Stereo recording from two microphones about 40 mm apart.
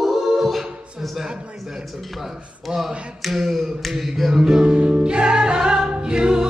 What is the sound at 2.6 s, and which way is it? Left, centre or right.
Speech, centre.